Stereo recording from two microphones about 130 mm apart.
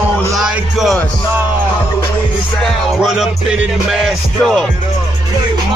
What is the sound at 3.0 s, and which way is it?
Music, 5° right (ahead or behind).